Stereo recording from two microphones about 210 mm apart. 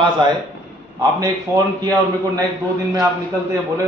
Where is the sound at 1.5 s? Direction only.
15° right (ahead or behind).